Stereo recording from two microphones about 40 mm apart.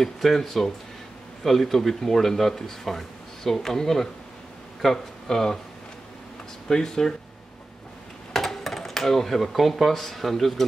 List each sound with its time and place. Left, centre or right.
0.0 s speech: centre
6.7 s speech: centre
8.3 s speech: centre